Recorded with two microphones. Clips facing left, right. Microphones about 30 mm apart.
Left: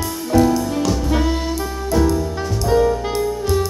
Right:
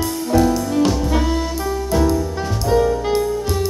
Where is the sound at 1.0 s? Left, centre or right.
Centre.